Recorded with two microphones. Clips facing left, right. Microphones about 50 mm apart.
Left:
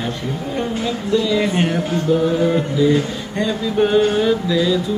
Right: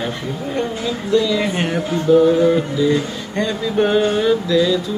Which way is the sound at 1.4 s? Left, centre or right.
Centre.